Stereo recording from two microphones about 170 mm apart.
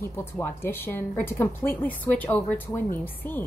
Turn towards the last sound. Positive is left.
turn(degrees=10)  # may be behind; listen again after turning